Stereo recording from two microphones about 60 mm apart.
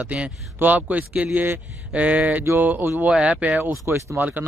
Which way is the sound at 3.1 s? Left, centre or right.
Centre.